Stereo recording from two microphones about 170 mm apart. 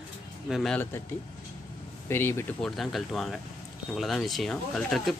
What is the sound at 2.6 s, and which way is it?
Speech, centre (ahead or behind).